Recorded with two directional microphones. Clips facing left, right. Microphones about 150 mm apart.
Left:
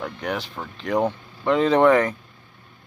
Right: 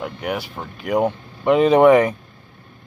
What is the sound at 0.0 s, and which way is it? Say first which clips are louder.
Speech: right 2 dB; 10° right (ahead or behind).